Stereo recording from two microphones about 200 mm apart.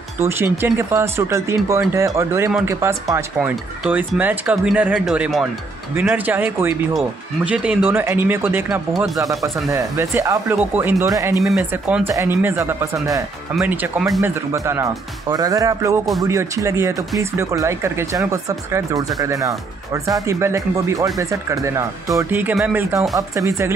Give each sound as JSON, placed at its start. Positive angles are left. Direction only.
{"t": 0.3, "sound": "speech", "side_deg": -10}
{"t": 9.2, "sound": "speech", "side_deg": -15}
{"t": 11.4, "sound": "speech", "side_deg": -5}
{"t": 13.6, "sound": "speech", "side_deg": -5}
{"t": 14.2, "sound": "speech", "side_deg": -15}